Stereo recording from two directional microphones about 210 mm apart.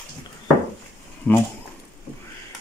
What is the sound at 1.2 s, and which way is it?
Speech, 5° left (ahead or behind).